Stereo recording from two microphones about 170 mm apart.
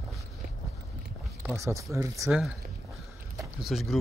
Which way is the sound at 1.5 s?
20° right (ahead or behind).